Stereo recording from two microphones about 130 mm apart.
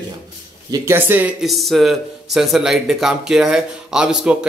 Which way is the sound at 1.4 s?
Centre (ahead or behind).